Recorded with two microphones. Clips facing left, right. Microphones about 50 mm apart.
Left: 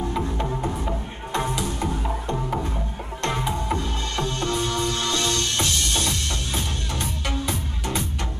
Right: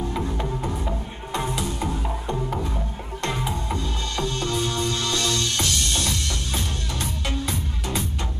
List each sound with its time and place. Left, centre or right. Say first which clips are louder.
0.1 s music: left 1 dB; centre
3.5 s music: left 2 dB; left
7.2 s music: left 1 dB; left